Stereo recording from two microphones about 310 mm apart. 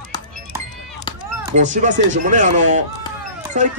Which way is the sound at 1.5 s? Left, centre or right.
Right.